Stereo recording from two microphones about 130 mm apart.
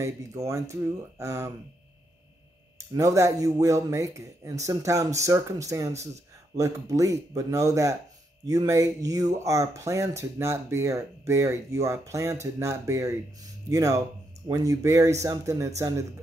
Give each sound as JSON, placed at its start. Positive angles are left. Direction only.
{"t": 0.0, "sound": "speech", "side_deg": -25}
{"t": 2.9, "sound": "speech", "side_deg": -25}